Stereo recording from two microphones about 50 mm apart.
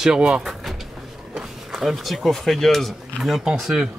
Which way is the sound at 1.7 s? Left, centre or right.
Centre.